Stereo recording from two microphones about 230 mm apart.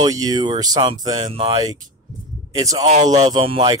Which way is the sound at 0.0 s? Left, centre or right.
Centre.